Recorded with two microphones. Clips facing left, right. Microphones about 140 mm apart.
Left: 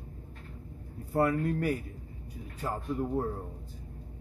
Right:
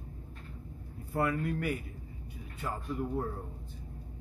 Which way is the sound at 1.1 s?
40° left (ahead or behind).